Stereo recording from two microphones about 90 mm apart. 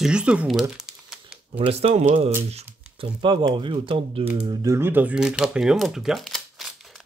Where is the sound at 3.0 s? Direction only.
65° right (ahead or behind); by 4.2 s 90° right.